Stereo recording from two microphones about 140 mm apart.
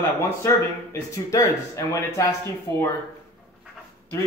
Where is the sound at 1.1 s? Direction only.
25° left (ahead or behind).